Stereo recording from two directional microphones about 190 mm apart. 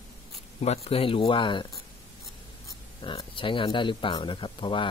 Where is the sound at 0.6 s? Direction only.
30° left (ahead or behind).